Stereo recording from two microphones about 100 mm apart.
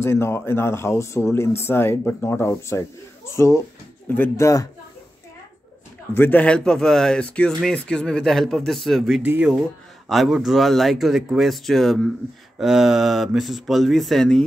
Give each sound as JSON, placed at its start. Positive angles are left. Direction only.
{"t": 0.0, "sound": "speech", "side_deg": 25}
{"t": 6.1, "sound": "speech", "side_deg": 20}
{"t": 9.2, "sound": "speech", "side_deg": -20}
{"t": 10.0, "sound": "speech", "side_deg": 0}